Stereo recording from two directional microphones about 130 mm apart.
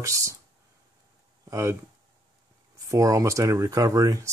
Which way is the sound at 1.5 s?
20° right (ahead or behind).